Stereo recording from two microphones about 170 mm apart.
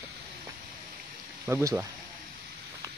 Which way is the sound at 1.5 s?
15° right (ahead or behind).